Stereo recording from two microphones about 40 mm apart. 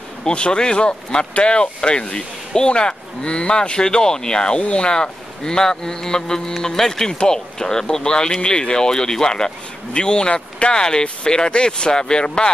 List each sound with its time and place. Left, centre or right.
0.2 s speech: left